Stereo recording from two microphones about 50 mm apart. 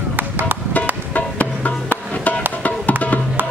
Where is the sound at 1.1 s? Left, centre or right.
Left.